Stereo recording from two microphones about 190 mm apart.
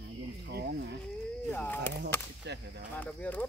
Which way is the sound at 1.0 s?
5° left (ahead or behind).